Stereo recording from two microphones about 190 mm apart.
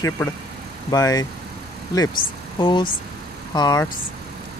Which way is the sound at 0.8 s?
20° left (ahead or behind).